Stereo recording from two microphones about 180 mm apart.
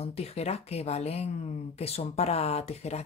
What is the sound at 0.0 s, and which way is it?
Speech, 35° left (ahead or behind).